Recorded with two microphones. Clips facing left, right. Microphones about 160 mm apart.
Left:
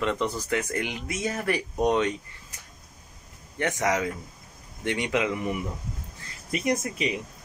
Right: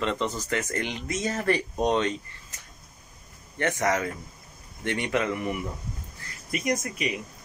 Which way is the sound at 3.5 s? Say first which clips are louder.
Even; 15° left (ahead or behind).